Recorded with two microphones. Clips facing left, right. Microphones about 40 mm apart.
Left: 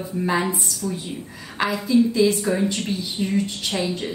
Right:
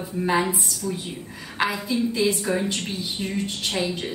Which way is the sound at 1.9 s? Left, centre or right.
Centre.